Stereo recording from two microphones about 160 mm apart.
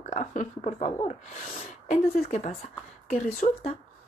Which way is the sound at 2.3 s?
45° left (ahead or behind).